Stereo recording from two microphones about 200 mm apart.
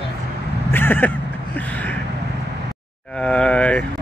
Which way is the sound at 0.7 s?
10° left (ahead or behind).